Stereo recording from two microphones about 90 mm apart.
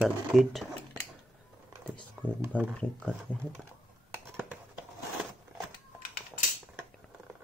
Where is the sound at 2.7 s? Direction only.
10° left (ahead or behind).